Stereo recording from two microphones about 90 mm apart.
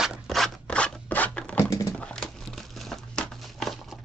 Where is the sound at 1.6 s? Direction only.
35° left (ahead or behind).